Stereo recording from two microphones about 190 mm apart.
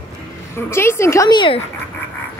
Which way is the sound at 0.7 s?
15° left (ahead or behind).